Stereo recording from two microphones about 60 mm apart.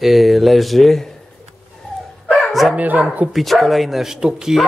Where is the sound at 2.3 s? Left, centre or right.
Centre.